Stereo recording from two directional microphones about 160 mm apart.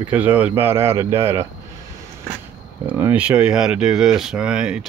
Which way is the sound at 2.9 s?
10° right (ahead or behind).